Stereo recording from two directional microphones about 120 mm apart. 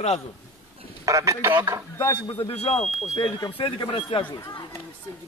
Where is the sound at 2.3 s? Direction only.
55° left (ahead or behind).